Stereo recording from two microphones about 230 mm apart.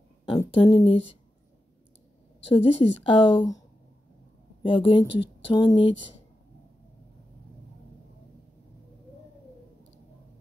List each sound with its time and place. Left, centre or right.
0.2 s speech: left
2.4 s speech: left
4.6 s speech: left